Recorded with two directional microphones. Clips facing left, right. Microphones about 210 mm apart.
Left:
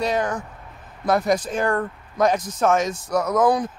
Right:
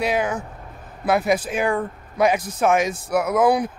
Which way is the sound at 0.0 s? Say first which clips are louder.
Right 1 dB; 5° right (ahead or behind).